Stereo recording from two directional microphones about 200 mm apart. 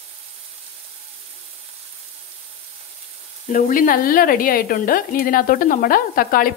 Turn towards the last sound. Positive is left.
turn(degrees=45)  # may be behind; listen again after turning